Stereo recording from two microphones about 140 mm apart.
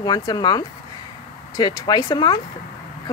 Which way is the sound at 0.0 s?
30° left (ahead or behind).